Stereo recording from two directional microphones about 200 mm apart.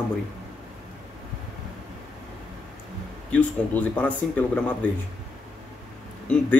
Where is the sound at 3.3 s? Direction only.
5° left (ahead or behind).